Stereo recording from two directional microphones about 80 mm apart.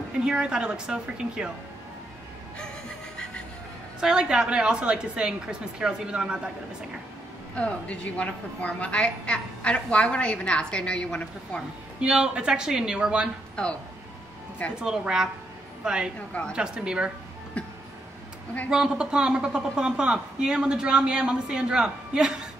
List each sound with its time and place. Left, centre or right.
0.2 s a woman's voice: centre
4.0 s a woman's voice: centre
7.5 s a woman's voice: centre
12.0 s a woman's voice: centre
13.6 s a woman's voice: centre
14.8 s a woman's voice: centre
17.6 s music: centre
18.7 s a woman's voice: centre